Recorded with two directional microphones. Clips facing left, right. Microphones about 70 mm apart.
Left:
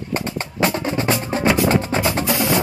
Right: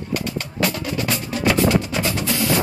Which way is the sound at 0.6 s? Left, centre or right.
Left.